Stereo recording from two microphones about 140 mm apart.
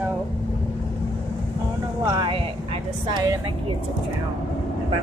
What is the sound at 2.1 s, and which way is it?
Speech, 35° right (ahead or behind).